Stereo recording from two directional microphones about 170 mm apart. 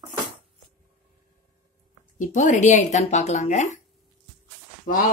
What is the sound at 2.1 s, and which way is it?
Speech, 50° left (ahead or behind).